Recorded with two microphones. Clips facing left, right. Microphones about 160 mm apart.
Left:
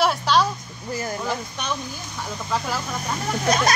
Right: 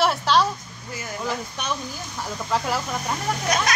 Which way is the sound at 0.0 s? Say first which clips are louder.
Even; centre (ahead or behind).